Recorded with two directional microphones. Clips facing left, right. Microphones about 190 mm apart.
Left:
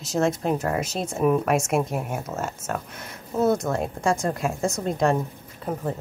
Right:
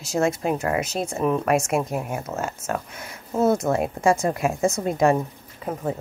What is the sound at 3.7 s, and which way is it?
A woman's voice, 15° right (ahead or behind).